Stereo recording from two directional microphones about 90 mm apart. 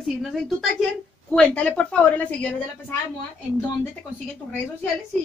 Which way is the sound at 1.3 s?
15° left (ahead or behind).